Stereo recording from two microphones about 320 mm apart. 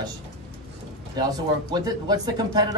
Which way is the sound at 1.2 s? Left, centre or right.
Centre.